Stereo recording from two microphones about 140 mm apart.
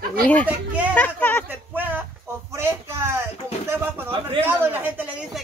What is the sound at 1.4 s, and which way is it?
Speech, 15° right (ahead or behind).